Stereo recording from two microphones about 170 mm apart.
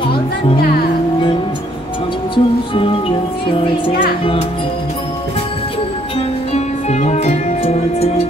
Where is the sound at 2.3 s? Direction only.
30° left (ahead or behind).